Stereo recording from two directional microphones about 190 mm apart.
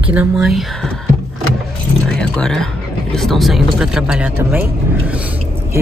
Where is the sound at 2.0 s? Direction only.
5° left (ahead or behind).